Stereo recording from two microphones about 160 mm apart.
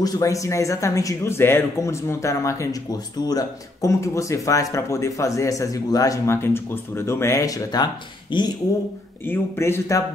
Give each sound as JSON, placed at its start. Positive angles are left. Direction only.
{"t": 0.0, "sound": "speech", "side_deg": 20}
{"t": 9.2, "sound": "speech", "side_deg": 15}